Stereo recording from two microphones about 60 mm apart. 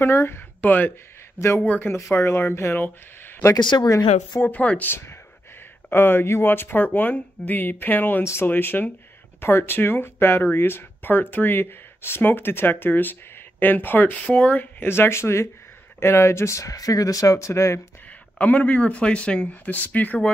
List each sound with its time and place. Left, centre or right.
0.0 s speech: left
0.6 s speech: left
2.1 s speech: left
2.8 s speech: left
3.7 s speech: left
4.4 s speech: left
5.9 s speech: left
8.2 s speech: left
8.5 s speech: left
18.4 s speech: left